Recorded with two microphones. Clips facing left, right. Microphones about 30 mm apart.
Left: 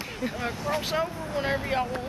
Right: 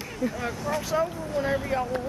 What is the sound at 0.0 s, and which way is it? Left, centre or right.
Speech, left.